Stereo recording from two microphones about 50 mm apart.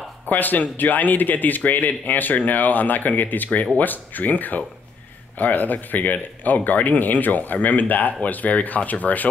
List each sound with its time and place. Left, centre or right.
0.3 s speech: left